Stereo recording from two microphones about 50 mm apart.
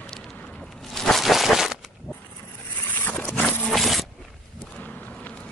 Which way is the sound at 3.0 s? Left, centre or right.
Left.